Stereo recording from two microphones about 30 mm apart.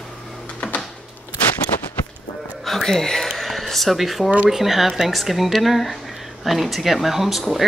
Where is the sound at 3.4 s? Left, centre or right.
Centre.